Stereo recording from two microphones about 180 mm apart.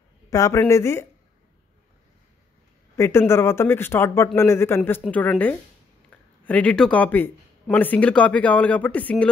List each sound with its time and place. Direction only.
0.3 s speech: 20° left (ahead or behind)
3.0 s speech: 15° left (ahead or behind)